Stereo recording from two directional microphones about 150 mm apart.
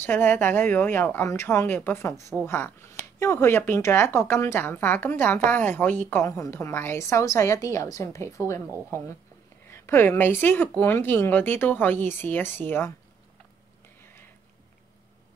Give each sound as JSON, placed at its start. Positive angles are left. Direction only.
{"t": 0.0, "sound": "a woman's voice", "side_deg": 15}
{"t": 9.7, "sound": "a woman's voice", "side_deg": 15}